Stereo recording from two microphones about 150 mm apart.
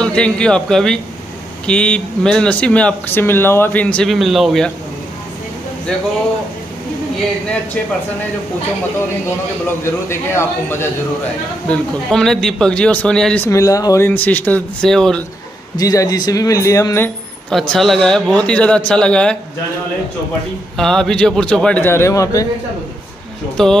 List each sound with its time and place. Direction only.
0.0 s speech: 5° left (ahead or behind)
9.8 s speech: 15° left (ahead or behind)
13.5 s speech: 20° left (ahead or behind); by 15.2 s 5° left (ahead or behind)
15.8 s speech: 25° left (ahead or behind)
17.5 s speech: 5° left (ahead or behind)
20.7 s speech: 5° left (ahead or behind); by 22.5 s 20° left (ahead or behind)
23.6 s speech: centre (ahead or behind)